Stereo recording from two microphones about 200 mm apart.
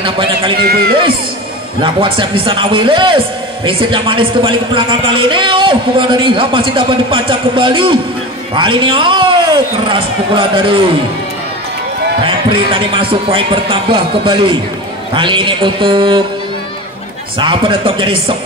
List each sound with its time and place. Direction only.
0.0 s a man's voice: 25° right (ahead or behind)
0.6 s speech: 50° right (ahead or behind)
1.8 s a man's voice: 25° right (ahead or behind)
12.3 s a man's voice: 25° right (ahead or behind)
17.4 s a man's voice: 25° right (ahead or behind)